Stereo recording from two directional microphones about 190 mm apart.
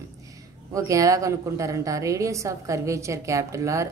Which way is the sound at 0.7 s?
15° right (ahead or behind).